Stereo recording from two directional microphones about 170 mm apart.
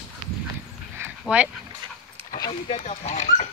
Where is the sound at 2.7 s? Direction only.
40° left (ahead or behind).